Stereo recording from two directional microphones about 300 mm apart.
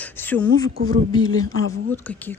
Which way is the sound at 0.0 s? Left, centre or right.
Centre.